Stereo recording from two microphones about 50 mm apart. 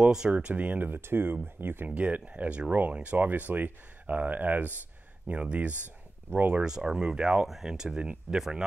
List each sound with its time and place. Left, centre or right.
0.0 s speech: centre
0.3 s speech: right
0.8 s speech: right
1.9 s speech: right
5.3 s speech: right
6.3 s speech: right
6.6 s speech: centre